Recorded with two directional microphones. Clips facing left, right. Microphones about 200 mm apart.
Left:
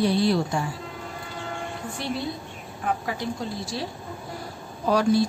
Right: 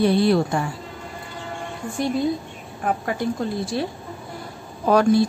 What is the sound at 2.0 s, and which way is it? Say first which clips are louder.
A woman's voice: right 9 dB; 45° right (ahead or behind).